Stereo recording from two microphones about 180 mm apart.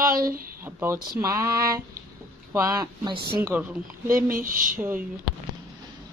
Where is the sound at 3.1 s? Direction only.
60° right (ahead or behind).